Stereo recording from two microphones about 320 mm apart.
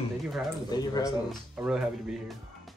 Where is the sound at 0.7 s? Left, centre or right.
Centre.